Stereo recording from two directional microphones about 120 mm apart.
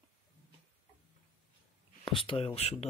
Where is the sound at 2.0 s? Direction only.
45° left (ahead or behind); by 2.9 s 60° left (ahead or behind).